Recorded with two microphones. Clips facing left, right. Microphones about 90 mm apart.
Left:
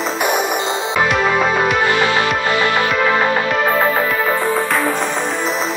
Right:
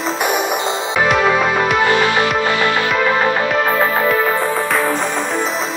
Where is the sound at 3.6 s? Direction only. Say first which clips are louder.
Even; centre (ahead or behind).